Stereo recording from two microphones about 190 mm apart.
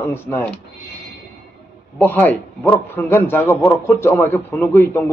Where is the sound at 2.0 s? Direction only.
10° left (ahead or behind).